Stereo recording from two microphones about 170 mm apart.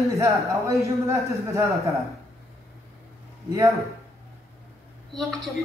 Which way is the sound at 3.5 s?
20° right (ahead or behind).